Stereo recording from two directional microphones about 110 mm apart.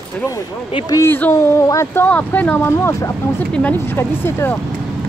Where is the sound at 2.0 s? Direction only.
15° left (ahead or behind).